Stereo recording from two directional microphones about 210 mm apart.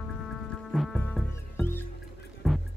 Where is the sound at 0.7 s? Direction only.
5° left (ahead or behind).